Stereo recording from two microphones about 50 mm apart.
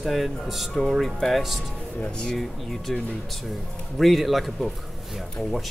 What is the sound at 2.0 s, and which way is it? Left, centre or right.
Speech, centre.